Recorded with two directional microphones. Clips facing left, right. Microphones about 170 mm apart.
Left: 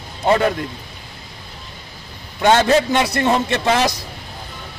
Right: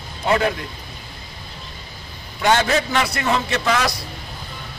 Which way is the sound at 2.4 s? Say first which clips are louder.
Left 4 dB; 25° left (ahead or behind).